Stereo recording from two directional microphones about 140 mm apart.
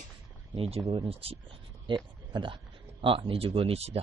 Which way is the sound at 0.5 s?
45° right (ahead or behind).